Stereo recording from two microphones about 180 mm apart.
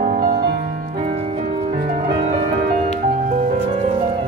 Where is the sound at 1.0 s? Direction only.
40° right (ahead or behind).